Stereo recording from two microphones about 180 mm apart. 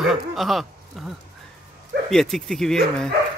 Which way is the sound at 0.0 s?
Centre (ahead or behind).